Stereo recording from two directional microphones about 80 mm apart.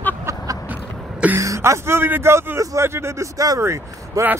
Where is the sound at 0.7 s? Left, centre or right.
Right.